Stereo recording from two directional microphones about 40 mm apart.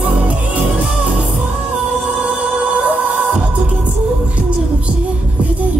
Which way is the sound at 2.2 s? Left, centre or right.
Right.